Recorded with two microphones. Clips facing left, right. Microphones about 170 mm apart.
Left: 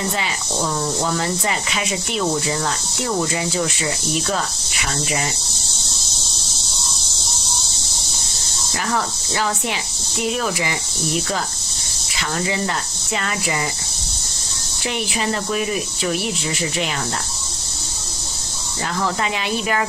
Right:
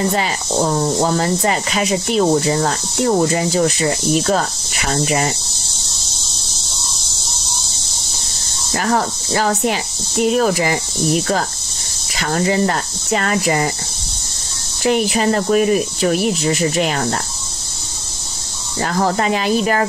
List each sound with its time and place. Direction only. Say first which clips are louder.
0.1 s speech: right 6 dB; 40° right (ahead or behind)
8.7 s speech: right 5 dB; 45° right (ahead or behind)
12.2 s speech: right 6 dB; 45° right (ahead or behind)
14.8 s speech: right 8 dB; 45° right (ahead or behind)
18.8 s speech: right 5 dB; 45° right (ahead or behind)